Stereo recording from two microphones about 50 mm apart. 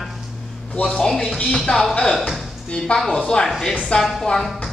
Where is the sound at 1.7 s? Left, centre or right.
Left.